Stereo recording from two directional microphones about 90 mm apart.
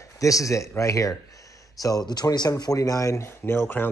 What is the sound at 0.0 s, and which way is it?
Speech, 35° left (ahead or behind).